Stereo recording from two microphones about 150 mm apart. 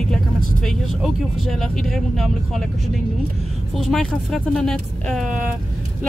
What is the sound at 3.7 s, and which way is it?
Speech, centre (ahead or behind).